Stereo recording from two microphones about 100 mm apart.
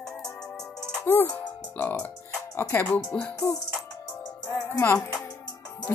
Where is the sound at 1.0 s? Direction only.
20° left (ahead or behind).